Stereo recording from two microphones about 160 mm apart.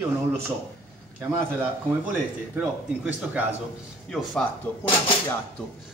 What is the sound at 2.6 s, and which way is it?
Speech, 10° right (ahead or behind).